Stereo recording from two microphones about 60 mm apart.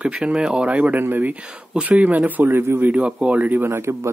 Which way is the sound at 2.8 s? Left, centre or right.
Right.